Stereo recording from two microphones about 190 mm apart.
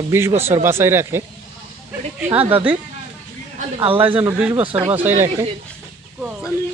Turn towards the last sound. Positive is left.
turn(degrees=-10)  # may be behind; listen again after turning